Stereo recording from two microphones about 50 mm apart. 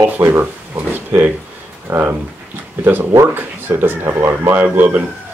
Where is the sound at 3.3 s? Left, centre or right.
Right.